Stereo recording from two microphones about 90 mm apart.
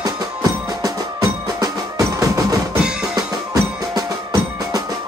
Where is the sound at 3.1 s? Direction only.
45° right (ahead or behind).